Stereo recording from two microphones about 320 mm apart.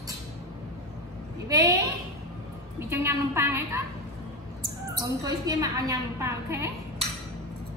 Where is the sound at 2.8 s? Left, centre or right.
Centre.